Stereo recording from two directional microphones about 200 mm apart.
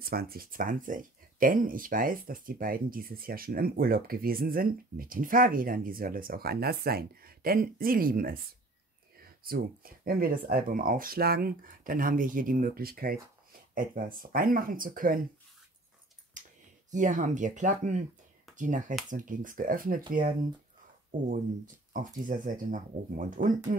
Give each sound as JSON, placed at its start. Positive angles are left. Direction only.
{"t": 0.0, "sound": "speech", "side_deg": -50}
{"t": 16.9, "sound": "speech", "side_deg": -40}